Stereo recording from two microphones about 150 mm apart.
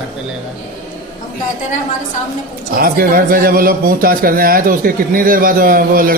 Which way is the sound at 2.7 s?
80° right.